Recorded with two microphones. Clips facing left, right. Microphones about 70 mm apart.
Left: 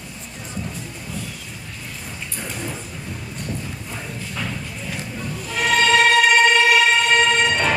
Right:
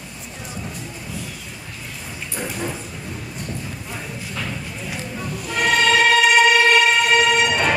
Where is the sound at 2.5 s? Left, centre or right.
Centre.